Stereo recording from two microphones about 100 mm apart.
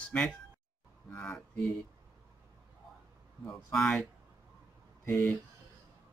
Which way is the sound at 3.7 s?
5° left (ahead or behind).